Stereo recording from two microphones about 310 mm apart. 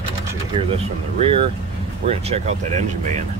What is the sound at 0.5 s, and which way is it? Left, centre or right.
Speech, centre.